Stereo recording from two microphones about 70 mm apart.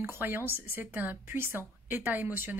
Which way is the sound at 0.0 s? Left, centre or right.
Right.